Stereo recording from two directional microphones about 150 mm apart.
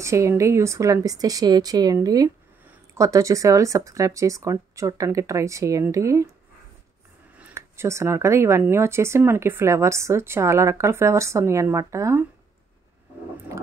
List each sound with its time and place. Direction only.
0.0 s speech: 20° right (ahead or behind)
7.3 s speech: 15° right (ahead or behind)
13.5 s a sound: 20° right (ahead or behind)